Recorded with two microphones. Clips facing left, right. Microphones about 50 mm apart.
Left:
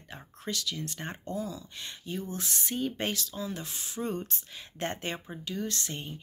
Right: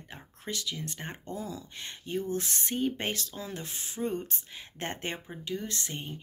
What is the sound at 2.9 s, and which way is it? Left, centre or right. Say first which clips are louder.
Speech: left 1 dB; right.